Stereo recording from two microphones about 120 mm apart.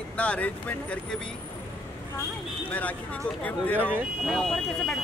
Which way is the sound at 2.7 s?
10° left (ahead or behind).